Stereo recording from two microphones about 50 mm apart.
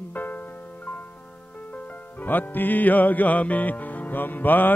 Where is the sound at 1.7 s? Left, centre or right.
Left.